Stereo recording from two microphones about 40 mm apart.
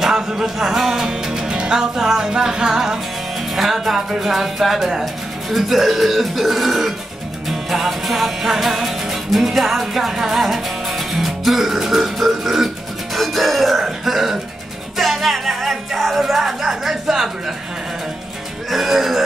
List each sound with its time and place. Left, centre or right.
0.0 s speech: centre
1.6 s music: centre
3.3 s speech: centre
4.2 s music: centre
5.0 s speech: centre
7.4 s music: centre
13.7 s cough: centre
15.0 s music: centre
18.7 s speech: centre